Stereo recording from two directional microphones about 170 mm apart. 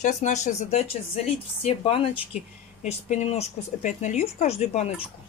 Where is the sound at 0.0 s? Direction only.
45° left (ahead or behind).